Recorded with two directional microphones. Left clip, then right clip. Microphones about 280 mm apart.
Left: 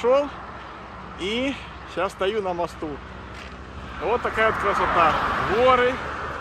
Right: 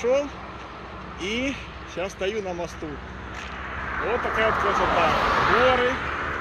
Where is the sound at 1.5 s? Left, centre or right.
Centre.